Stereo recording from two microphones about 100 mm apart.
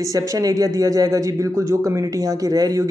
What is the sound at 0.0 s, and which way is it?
Speech, 35° right (ahead or behind).